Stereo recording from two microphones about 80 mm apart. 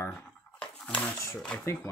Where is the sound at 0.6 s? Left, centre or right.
Centre.